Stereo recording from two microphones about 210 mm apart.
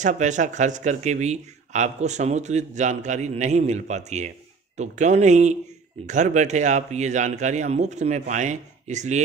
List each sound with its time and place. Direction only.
0.0 s speech: 35° right (ahead or behind)